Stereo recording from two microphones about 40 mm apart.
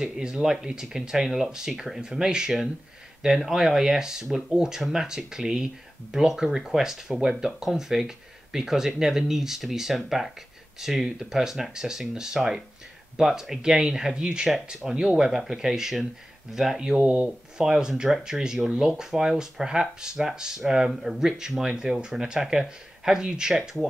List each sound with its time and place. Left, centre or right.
0.0 s speech: centre
2.0 s speech: centre
20.9 s speech: centre
21.2 s speech: centre